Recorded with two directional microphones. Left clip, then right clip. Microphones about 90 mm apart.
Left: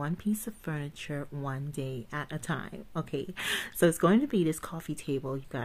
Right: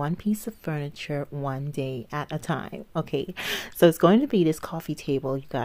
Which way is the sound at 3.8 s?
35° right (ahead or behind).